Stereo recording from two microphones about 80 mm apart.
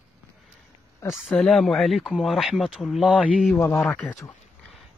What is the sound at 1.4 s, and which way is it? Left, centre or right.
A man's voice, centre.